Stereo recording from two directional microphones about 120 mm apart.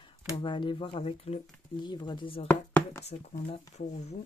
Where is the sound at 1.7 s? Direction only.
40° left (ahead or behind).